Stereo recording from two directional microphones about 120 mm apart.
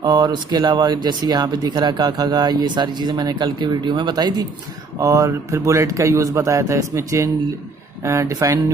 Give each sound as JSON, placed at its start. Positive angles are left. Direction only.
{"t": 0.0, "sound": "a man's voice", "side_deg": -35}